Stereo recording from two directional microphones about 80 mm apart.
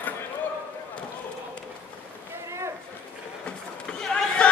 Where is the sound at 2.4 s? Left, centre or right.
Right.